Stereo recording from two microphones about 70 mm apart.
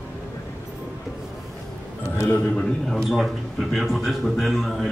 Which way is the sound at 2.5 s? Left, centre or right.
Centre.